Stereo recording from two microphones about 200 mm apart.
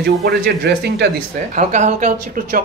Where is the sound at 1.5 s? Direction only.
35° right (ahead or behind).